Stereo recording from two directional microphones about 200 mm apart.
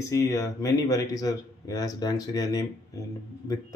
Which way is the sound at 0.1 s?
15° left (ahead or behind).